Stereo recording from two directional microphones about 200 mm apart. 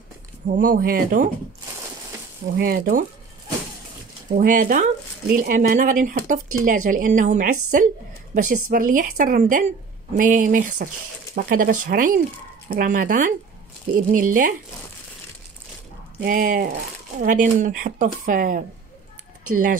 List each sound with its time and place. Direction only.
0.6 s speech: 45° right (ahead or behind)
2.6 s speech: 45° right (ahead or behind)
4.4 s a woman's voice: 40° right (ahead or behind)
8.6 s a woman's voice: 40° right (ahead or behind)
16.2 s a woman's voice: 45° right (ahead or behind)